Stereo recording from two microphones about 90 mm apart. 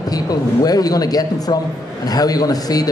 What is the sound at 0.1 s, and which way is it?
A man's voice, 45° left (ahead or behind).